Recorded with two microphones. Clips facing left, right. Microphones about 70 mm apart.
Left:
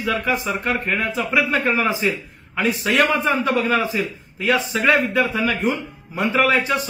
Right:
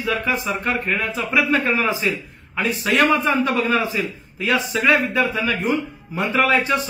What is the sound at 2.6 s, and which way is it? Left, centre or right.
Speech, left.